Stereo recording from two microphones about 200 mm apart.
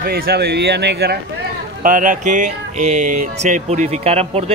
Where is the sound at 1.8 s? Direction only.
40° right (ahead or behind).